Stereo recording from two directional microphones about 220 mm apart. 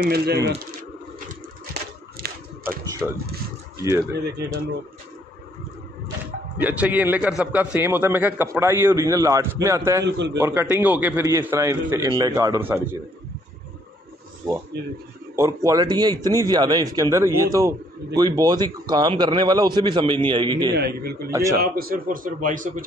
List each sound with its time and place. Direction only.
0.0 s a man's voice: 45° right (ahead or behind)
1.7 s a sound: 45° right (ahead or behind)
3.0 s speech: 5° right (ahead or behind)
4.1 s a man's voice: 50° right (ahead or behind)
6.6 s speech: 5° right (ahead or behind)
10.0 s a man's voice: 50° right (ahead or behind)
10.3 s speech: 10° right (ahead or behind)
14.7 s a man's voice: 50° right (ahead or behind)
15.3 s speech: 15° right (ahead or behind)
20.7 s a man's voice: 45° right (ahead or behind)
21.3 s speech: 15° right (ahead or behind)
21.5 s a man's voice: 40° right (ahead or behind)